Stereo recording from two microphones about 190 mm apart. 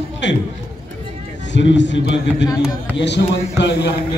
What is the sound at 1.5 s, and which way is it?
Speech, 70° left (ahead or behind).